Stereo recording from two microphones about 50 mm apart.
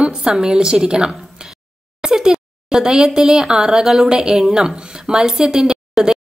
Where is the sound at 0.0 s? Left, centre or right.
Centre.